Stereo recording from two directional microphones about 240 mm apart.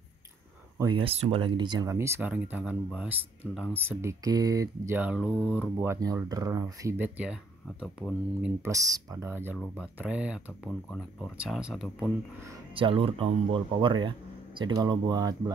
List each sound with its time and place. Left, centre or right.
0.7 s speech: centre
8.6 s speech: centre
12.4 s speech: right